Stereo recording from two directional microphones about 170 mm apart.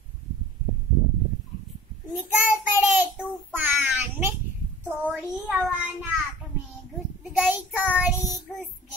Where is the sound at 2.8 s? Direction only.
10° right (ahead or behind).